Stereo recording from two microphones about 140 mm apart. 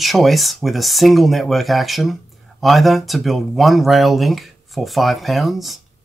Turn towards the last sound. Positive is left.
turn(degrees=0)  # may be behind; listen again after turning